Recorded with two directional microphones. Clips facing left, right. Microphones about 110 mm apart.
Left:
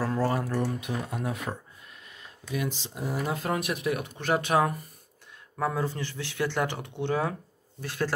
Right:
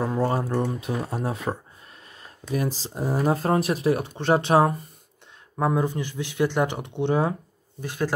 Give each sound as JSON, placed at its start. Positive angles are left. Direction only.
{"t": 0.0, "sound": "speech", "side_deg": -25}